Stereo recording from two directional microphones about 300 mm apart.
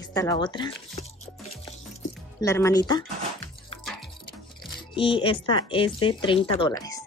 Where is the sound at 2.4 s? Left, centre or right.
Centre.